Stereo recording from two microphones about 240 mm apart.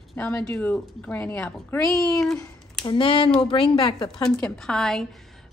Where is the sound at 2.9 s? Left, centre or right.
Left.